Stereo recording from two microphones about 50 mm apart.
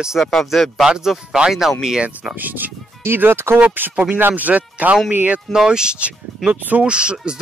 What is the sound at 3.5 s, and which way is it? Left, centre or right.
Speech, right.